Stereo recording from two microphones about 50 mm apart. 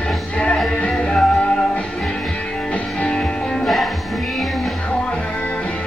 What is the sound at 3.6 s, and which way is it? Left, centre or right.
Music, centre.